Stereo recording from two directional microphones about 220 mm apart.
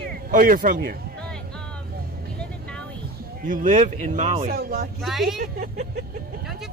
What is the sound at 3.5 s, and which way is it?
Speech, 35° right (ahead or behind).